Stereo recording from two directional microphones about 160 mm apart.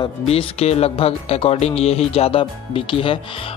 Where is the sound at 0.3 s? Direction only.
40° left (ahead or behind).